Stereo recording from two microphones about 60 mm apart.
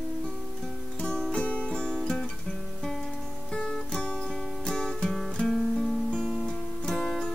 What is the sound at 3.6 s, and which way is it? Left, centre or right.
Guitar, centre.